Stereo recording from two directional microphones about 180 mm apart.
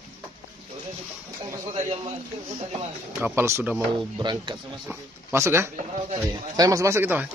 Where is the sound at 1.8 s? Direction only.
35° right (ahead or behind).